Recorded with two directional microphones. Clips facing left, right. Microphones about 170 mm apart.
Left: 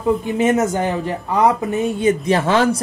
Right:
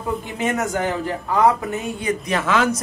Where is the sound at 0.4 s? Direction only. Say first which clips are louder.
Left 2 dB; 25° left (ahead or behind).